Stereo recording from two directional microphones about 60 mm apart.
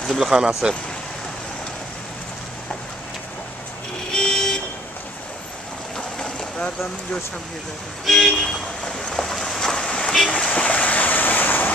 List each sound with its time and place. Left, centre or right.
0.2 s speech: centre
4.1 s vehicle: centre
5.9 s boat: centre
8.0 s vehicle: centre
10.3 s vehicle: left